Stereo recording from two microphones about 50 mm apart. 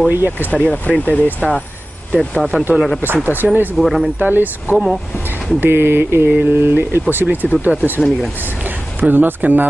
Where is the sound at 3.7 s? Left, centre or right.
Centre.